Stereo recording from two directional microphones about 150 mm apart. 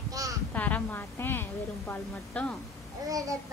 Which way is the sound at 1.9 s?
10° left (ahead or behind).